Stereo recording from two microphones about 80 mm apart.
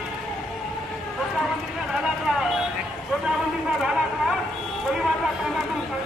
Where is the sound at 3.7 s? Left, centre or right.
Centre.